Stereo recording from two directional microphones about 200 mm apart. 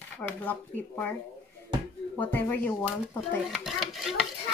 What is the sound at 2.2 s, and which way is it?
Speech, 10° left (ahead or behind).